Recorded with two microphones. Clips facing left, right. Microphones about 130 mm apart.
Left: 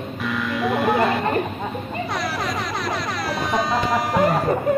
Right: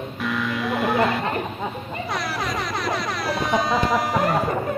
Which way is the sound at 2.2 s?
Centre (ahead or behind).